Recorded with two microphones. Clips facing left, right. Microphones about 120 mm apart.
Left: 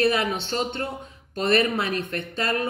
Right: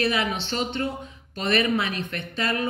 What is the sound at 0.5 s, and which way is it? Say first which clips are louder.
Speech: even; 40° left (ahead or behind).